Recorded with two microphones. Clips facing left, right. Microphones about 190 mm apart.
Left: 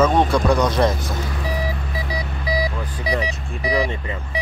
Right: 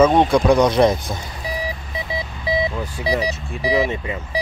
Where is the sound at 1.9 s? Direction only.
25° right (ahead or behind).